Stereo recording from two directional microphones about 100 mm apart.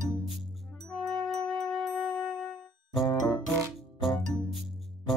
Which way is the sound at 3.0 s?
35° left (ahead or behind).